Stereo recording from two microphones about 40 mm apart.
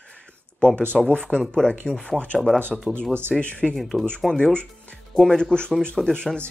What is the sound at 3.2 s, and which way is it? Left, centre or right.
Speech, left.